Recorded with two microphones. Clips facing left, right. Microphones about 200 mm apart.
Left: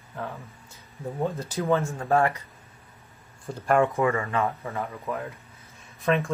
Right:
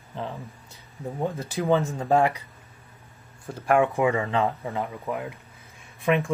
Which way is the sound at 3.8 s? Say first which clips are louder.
Right 1 dB; 15° right (ahead or behind).